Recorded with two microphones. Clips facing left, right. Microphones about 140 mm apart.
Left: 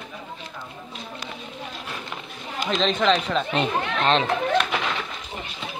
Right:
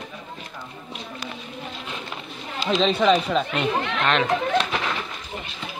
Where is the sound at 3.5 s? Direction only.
30° left (ahead or behind).